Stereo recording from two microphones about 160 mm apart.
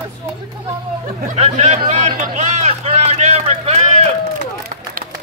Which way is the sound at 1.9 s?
50° right (ahead or behind).